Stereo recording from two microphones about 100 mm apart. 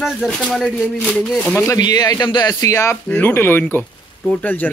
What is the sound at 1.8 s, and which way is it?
Speech, 40° left (ahead or behind).